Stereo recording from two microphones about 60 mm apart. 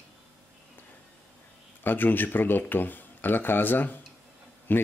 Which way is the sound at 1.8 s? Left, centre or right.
Left.